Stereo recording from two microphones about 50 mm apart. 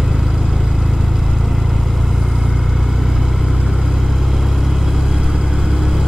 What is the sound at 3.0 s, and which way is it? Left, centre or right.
Vehicle, centre.